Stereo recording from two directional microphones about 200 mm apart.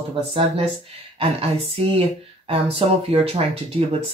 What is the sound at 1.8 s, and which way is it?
Speech, 30° right (ahead or behind).